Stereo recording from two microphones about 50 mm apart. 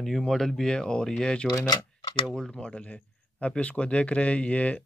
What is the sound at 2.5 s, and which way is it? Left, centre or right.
A man's voice, left.